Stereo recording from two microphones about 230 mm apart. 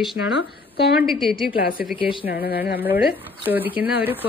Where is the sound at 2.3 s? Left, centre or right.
Left.